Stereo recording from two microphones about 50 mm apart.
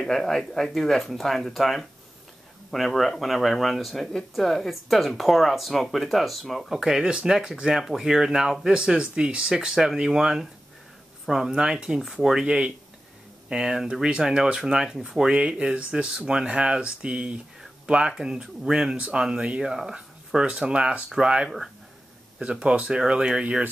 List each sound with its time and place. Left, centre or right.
0.0 s speech: centre
6.7 s speech: centre
12.0 s speech: centre
18.9 s speech: right